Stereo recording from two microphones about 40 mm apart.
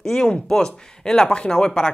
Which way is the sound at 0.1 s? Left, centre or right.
Centre.